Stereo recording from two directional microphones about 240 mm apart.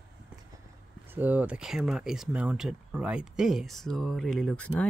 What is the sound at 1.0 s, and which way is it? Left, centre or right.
Speech, centre.